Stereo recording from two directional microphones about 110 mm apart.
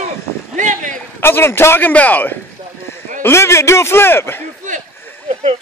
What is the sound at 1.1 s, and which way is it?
A man's voice, 20° left (ahead or behind).